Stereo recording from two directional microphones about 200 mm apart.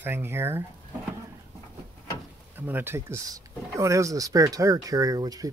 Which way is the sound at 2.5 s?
10° right (ahead or behind).